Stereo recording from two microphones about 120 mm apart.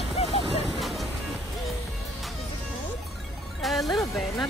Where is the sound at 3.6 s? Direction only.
Centre (ahead or behind).